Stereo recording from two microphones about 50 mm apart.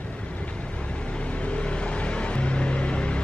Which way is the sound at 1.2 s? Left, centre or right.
Left.